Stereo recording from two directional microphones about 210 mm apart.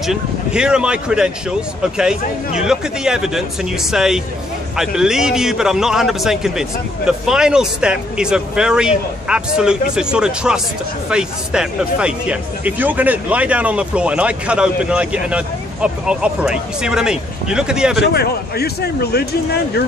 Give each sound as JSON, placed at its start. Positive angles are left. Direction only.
{"t": 0.0, "sound": "speech", "side_deg": -5}
{"t": 18.0, "sound": "speech", "side_deg": 50}